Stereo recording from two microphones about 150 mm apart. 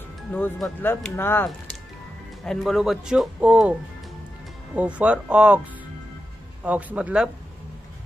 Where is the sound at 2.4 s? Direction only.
Centre (ahead or behind).